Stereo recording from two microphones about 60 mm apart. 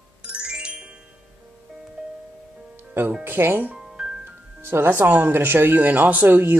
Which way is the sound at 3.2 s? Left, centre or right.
Right.